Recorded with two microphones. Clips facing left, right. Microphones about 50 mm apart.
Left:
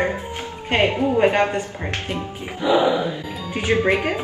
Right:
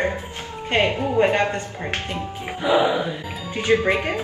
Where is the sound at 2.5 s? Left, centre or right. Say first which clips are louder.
Left 1 dB; right.